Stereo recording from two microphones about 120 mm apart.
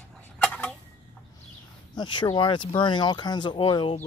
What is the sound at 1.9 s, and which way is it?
Speech, 35° left (ahead or behind).